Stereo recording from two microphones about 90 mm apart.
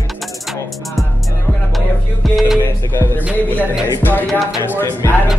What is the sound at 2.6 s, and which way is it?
Music, 30° left (ahead or behind).